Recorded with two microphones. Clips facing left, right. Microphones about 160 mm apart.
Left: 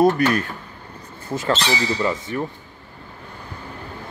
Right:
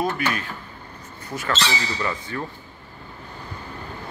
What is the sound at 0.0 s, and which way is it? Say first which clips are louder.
Speech: left 8 dB; 45° left (ahead or behind).